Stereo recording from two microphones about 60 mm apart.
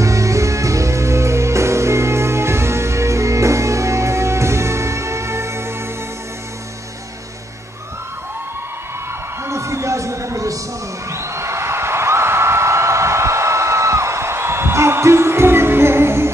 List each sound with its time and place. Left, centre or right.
0.0 s music: right
9.5 s music: right
11.1 s a sound: right